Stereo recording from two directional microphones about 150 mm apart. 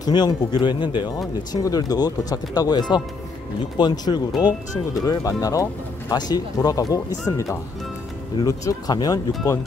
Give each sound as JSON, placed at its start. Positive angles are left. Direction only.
{"t": 0.0, "sound": "speech", "side_deg": 30}